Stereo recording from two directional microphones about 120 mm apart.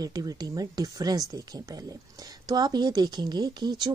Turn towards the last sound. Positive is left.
turn(degrees=-35)  # may be behind; listen again after turning